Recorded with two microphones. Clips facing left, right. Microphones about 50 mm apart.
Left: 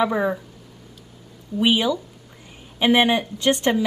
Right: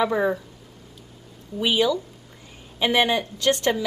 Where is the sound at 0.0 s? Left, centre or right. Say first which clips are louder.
Left 1 dB; centre.